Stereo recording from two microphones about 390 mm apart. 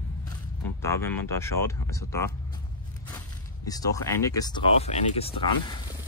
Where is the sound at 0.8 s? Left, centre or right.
Centre.